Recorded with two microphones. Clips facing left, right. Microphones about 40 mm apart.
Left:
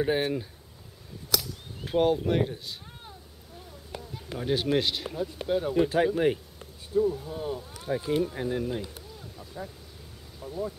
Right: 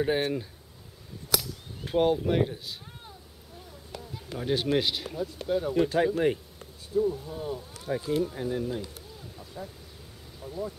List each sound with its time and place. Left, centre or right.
0.0 s speech: centre
1.4 s whip: centre
3.9 s a sound: centre
4.4 s speech: centre
5.0 s speech: centre
7.7 s a sound: centre
8.0 s speech: centre
10.4 s speech: centre